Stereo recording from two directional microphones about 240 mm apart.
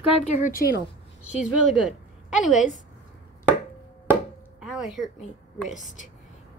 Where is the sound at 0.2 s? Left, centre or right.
Left.